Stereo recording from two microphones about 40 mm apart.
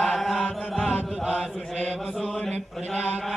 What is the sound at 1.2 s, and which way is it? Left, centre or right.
Mantra, right.